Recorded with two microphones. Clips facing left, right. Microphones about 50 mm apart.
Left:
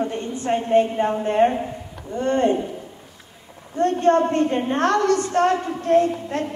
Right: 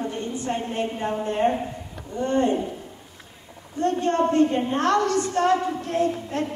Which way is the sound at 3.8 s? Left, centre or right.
Left.